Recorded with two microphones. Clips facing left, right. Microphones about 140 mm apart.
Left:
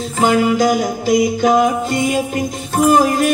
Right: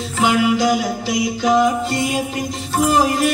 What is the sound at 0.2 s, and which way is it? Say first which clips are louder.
Music: left 2 dB; 45° left (ahead or behind).